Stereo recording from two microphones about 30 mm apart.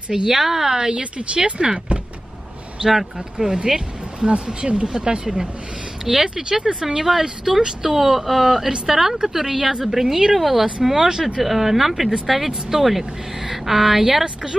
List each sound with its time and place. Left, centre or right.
0.1 s a woman's voice: centre
0.9 s speech: right
2.8 s a woman's voice: centre
3.3 s speech: right
4.2 s speech: right
6.1 s a woman's voice: centre
6.6 s a woman's voice: right
11.1 s speech: right
11.4 s a woman's voice: centre
14.2 s speech: right